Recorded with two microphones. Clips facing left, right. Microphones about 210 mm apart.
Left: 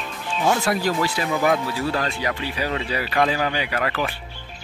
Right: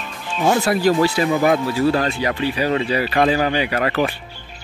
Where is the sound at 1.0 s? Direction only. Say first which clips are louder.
Right 5 dB; 30° right (ahead or behind).